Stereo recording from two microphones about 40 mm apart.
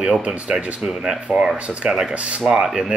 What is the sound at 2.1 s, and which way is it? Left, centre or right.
Speech, right.